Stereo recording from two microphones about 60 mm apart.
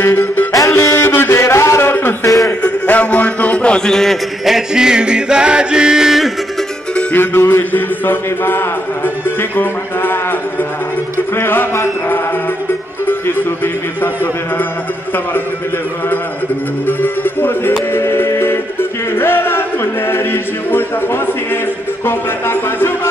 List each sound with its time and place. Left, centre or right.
0.0 s music: left
0.5 s music: left
0.9 s a sound: left
1.3 s a sound: left
2.2 s a sound: left
2.6 s a sound: left; by 4.2 s centre
4.5 s music: centre
7.2 s mantra: left
11.3 s mantra: left
16.8 s mantra: left
17.9 s music: left
22.0 s mantra: left